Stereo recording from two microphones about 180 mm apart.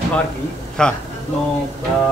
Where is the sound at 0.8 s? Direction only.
5° left (ahead or behind).